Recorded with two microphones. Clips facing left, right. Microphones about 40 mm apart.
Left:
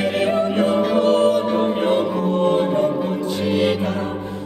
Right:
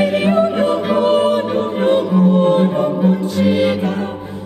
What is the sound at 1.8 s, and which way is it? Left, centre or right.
Music, centre.